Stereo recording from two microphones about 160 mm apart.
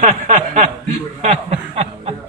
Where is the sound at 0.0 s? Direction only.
50° right (ahead or behind).